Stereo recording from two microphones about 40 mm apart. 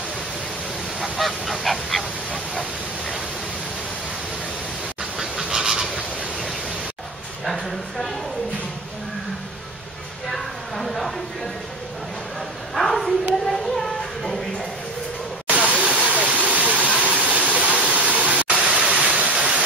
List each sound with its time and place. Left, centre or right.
1.0 s goose: centre
5.2 s fowl: centre
10.3 s a sound: centre
12.7 s a sound: centre
15.4 s waterfall: right
19.3 s waterfall: right